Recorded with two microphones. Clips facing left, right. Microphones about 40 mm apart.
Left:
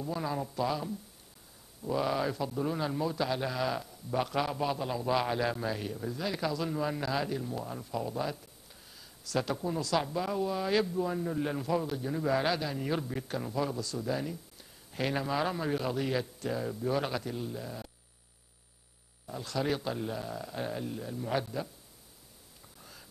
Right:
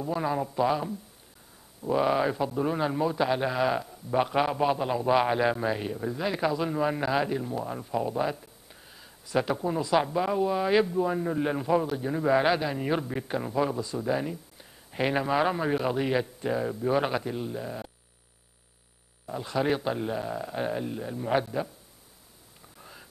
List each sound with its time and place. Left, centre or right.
0.0 s a man's voice: right
19.2 s a man's voice: right
22.8 s a sound: right